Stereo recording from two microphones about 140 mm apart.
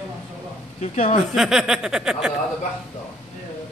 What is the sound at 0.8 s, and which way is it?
Speech, 50° left (ahead or behind).